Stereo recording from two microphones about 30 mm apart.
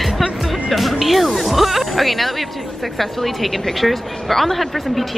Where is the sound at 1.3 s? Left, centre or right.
Centre.